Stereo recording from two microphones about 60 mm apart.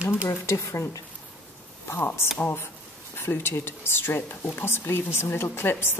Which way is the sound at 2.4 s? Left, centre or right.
Left.